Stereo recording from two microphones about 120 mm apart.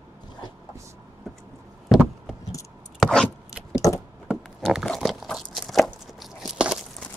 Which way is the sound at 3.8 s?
30° left (ahead or behind).